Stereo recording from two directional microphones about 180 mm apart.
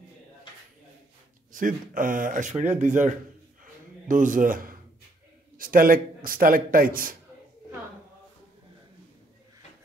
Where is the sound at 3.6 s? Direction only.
45° right (ahead or behind).